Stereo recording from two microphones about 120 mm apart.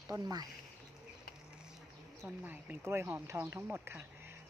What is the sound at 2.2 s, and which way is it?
Speech, 15° right (ahead or behind).